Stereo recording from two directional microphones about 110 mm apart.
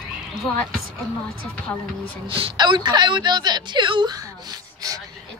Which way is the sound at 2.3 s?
50° right (ahead or behind).